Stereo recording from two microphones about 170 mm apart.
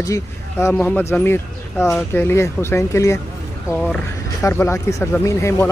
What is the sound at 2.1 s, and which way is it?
Speech, 15° left (ahead or behind).